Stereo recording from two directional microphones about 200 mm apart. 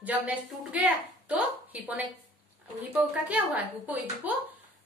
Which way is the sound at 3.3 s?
10° right (ahead or behind).